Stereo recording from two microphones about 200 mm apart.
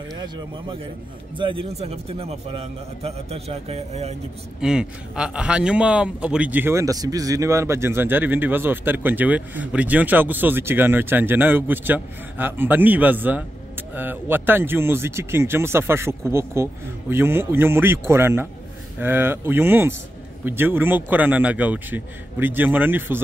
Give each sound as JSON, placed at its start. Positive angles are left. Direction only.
{"t": 1.3, "sound": "a man's voice", "side_deg": -25}
{"t": 4.6, "sound": "a man's voice", "side_deg": -5}